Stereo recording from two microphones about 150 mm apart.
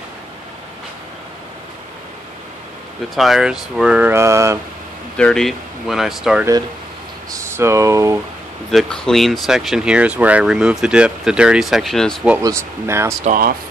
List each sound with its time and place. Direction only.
3.2 s speech: centre (ahead or behind); by 4.6 s 20° right (ahead or behind)
5.1 s speech: 5° left (ahead or behind)
7.2 s speech: 20° right (ahead or behind)
8.7 s speech: 5° left (ahead or behind)
12.4 s speech: 20° right (ahead or behind)
13.2 s speech: 70° right (ahead or behind)